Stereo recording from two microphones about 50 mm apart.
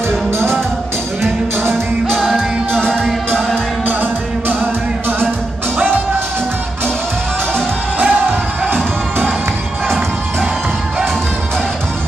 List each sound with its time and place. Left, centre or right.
2.0 s music: centre
3.8 s music: right
5.8 s music: right
8.0 s music: right